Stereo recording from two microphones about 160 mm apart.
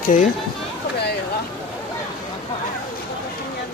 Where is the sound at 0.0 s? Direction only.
50° left (ahead or behind).